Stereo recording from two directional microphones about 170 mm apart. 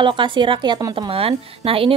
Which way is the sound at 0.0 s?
30° right (ahead or behind).